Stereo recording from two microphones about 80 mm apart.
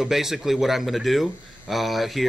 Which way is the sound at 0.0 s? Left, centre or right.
Centre.